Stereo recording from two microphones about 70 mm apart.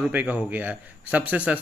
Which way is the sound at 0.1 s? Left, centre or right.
Right.